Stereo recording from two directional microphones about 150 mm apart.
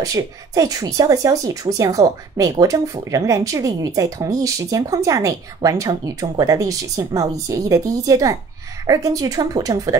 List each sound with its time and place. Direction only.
0.0 s speech: 25° right (ahead or behind)